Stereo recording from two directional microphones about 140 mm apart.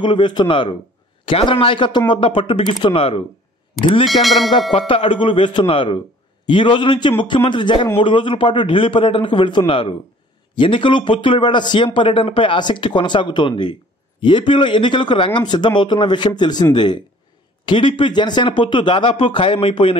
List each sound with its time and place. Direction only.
0.0 s a man's voice: 35° left (ahead or behind)
4.1 s bell: centre (ahead or behind)
4.7 s a man's voice: 40° left (ahead or behind)